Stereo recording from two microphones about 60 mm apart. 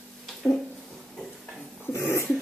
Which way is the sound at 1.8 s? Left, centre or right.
Left.